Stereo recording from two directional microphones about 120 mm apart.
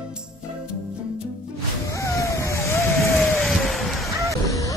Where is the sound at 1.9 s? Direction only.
25° left (ahead or behind).